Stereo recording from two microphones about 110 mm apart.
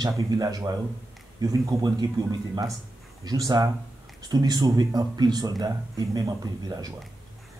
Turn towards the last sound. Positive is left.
turn(degrees=-35)  # may be behind; listen again after turning